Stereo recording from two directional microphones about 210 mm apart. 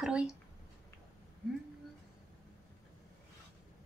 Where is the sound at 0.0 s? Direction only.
5° right (ahead or behind).